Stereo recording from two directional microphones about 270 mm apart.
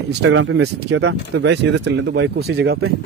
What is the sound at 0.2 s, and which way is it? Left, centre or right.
Speech, right.